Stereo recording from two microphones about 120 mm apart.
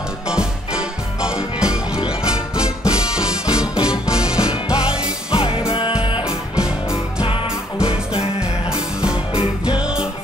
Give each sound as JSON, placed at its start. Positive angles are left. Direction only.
{"t": 0.3, "sound": "music", "side_deg": -5}
{"t": 5.3, "sound": "music", "side_deg": 50}
{"t": 6.2, "sound": "music", "side_deg": -5}
{"t": 7.8, "sound": "music", "side_deg": 50}
{"t": 9.7, "sound": "music", "side_deg": -10}